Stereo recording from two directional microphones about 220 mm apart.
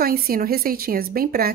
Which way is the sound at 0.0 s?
40° right (ahead or behind).